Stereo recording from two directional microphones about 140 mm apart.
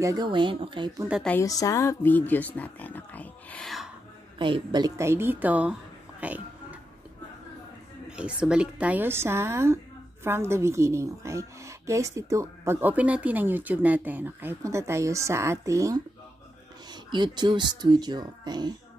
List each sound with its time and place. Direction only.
0.0 s speech: 30° right (ahead or behind)
1.4 s speech: 25° left (ahead or behind); by 3.9 s centre (ahead or behind)
4.4 s speech: 35° right (ahead or behind); by 5.8 s 10° right (ahead or behind)
6.2 s music: 10° right (ahead or behind)
8.2 s a woman's voice: 5° right (ahead or behind); by 18.7 s 30° right (ahead or behind)